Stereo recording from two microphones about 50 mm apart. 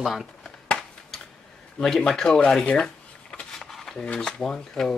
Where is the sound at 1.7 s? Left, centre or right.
Centre.